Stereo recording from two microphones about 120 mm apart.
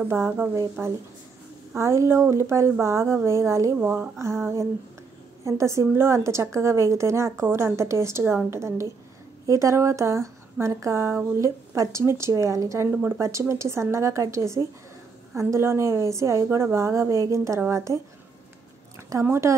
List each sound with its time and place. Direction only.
0.0 s speech: 15° right (ahead or behind)
3.7 s a woman's voice: 15° right (ahead or behind)